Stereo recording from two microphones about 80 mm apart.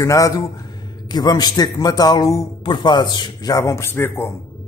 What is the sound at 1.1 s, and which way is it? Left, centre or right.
A man's voice, left.